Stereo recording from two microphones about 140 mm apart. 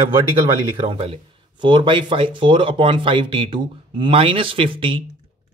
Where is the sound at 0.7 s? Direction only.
35° right (ahead or behind).